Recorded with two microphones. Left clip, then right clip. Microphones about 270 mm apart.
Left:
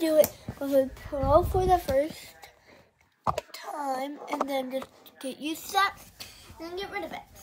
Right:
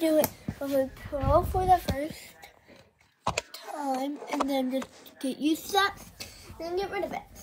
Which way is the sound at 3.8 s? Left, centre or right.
Left.